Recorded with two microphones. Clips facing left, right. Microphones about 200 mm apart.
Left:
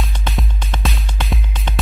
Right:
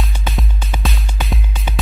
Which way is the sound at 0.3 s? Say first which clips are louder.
Even; centre (ahead or behind).